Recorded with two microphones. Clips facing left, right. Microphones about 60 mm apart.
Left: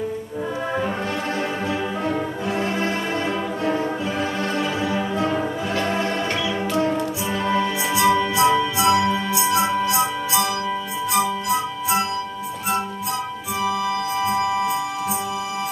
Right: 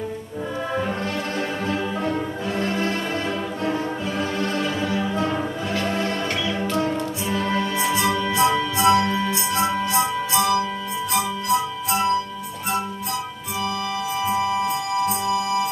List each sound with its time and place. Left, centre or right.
2.6 s music: centre
14.2 s music: centre